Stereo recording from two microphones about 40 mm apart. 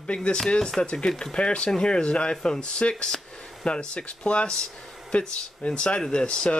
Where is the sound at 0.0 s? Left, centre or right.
Left.